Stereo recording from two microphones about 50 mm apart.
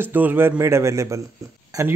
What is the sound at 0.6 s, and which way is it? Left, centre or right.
A man's voice, right.